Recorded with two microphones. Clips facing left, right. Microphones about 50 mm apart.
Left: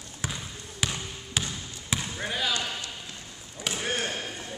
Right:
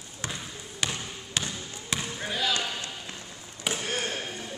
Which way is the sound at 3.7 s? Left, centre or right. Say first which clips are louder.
Right 1 dB; centre.